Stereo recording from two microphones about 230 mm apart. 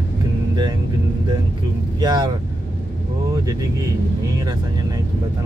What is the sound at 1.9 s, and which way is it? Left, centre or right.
Speech, centre.